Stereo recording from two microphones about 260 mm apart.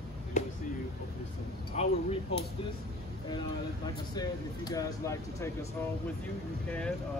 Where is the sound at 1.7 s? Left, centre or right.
Left.